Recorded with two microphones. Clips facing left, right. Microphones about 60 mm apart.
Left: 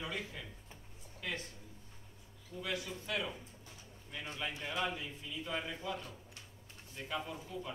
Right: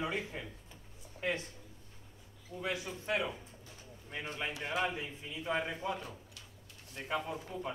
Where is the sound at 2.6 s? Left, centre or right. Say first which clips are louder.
Right 3 dB; right.